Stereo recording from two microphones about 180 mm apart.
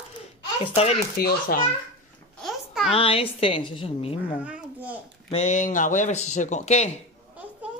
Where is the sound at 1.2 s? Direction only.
55° left (ahead or behind).